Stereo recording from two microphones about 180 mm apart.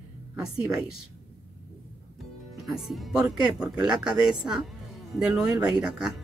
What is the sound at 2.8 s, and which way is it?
Speech, centre (ahead or behind).